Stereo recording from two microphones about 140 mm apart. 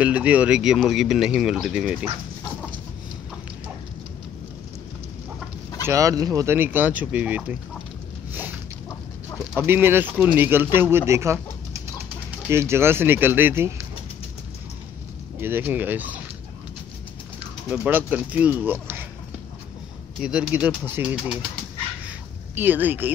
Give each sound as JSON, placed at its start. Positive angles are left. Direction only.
{"t": 0.0, "sound": "speech", "side_deg": -10}
{"t": 5.9, "sound": "speech", "side_deg": -25}
{"t": 8.3, "sound": "zipper", "side_deg": -15}
{"t": 9.6, "sound": "speech", "side_deg": -15}
{"t": 15.4, "sound": "speech", "side_deg": -15}
{"t": 17.6, "sound": "speech", "side_deg": -10}
{"t": 20.2, "sound": "speech", "side_deg": -5}
{"t": 22.6, "sound": "speech", "side_deg": -15}